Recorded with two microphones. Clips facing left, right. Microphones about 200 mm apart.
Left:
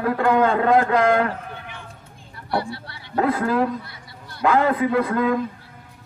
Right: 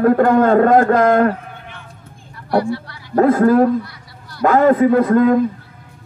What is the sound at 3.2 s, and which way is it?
A man's voice, 45° right (ahead or behind).